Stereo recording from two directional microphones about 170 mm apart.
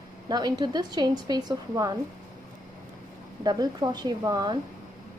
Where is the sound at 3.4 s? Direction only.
25° right (ahead or behind).